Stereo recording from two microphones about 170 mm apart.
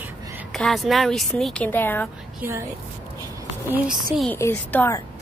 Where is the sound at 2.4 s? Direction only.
15° right (ahead or behind).